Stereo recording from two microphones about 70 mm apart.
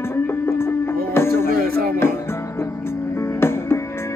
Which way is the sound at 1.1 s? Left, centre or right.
Left.